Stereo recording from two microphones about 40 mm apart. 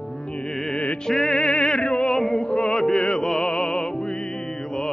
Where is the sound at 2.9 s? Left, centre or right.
Left.